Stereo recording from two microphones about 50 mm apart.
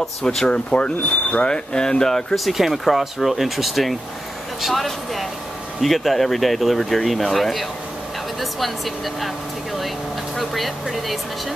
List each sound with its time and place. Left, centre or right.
0.2 s speech: centre
0.5 s speech: left
2.3 s speech: centre
10.3 s speech: centre